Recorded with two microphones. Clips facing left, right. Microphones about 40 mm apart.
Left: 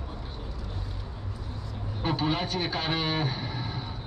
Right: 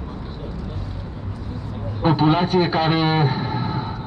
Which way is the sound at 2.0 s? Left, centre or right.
Right.